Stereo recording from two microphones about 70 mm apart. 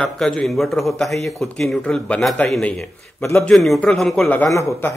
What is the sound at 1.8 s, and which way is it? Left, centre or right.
A man's voice, centre.